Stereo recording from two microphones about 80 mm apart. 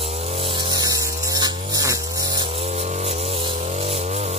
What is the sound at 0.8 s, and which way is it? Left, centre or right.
Chainsaw, right.